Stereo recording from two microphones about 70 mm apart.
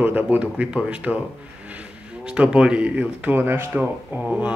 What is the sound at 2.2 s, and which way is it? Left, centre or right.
Speech, centre.